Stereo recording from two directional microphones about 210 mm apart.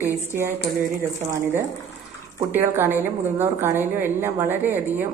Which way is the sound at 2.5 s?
10° right (ahead or behind).